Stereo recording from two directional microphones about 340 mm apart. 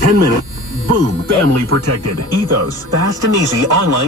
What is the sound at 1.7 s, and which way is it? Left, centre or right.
Speech, right.